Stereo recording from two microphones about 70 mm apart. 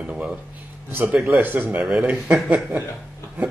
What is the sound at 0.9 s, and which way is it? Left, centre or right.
Speech, right.